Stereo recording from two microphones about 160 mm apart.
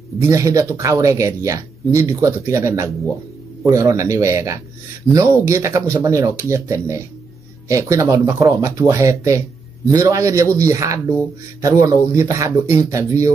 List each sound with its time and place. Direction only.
0.2 s speech: 20° right (ahead or behind)